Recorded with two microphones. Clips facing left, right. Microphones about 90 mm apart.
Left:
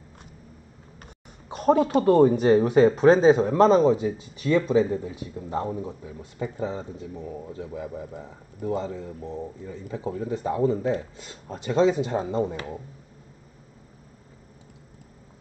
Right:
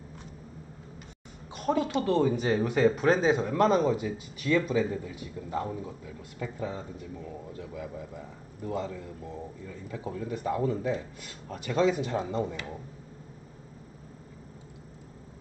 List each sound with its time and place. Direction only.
1.5 s speech: 40° left (ahead or behind)